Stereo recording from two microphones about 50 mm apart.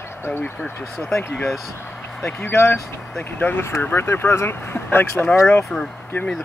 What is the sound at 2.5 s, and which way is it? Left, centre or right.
Speech, left.